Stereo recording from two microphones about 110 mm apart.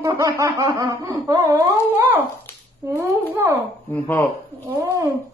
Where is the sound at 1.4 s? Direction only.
30° right (ahead or behind).